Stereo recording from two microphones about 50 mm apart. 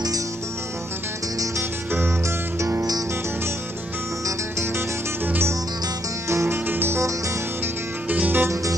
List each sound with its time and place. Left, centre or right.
1.6 s music: right
2.2 s music: right
4.3 s music: right
6.2 s music: right
6.7 s music: right
8.1 s music: right